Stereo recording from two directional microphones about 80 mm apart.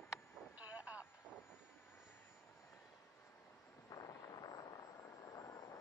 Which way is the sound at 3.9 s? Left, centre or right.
Left.